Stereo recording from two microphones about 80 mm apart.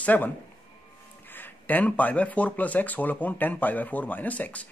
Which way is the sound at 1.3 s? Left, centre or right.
Left.